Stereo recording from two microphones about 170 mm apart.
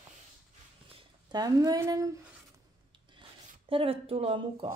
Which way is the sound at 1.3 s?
20° right (ahead or behind).